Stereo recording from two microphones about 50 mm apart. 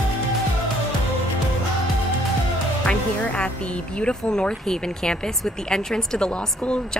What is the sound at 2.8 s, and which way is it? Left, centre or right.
A woman's voice, left.